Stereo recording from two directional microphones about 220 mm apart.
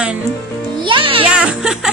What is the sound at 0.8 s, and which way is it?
Speech, 25° right (ahead or behind).